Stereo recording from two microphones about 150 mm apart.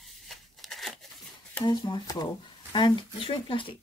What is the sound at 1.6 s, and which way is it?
Speech, 30° left (ahead or behind).